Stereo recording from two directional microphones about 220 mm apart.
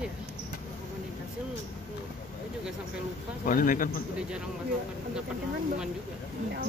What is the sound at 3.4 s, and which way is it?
Speech, 40° left (ahead or behind).